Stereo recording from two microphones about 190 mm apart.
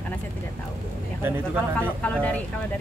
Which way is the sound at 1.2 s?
10° right (ahead or behind).